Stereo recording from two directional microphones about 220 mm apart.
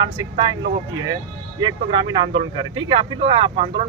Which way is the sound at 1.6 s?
20° right (ahead or behind).